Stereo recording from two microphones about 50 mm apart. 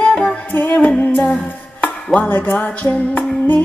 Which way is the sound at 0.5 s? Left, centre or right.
Left.